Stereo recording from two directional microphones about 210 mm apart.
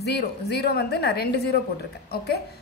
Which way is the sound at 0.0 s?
50° left (ahead or behind).